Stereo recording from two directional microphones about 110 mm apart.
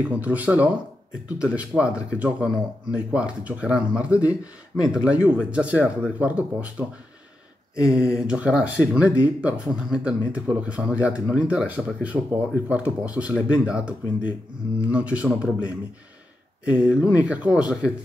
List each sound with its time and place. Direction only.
0.0 s speech: 15° right (ahead or behind)
16.6 s speech: 10° right (ahead or behind)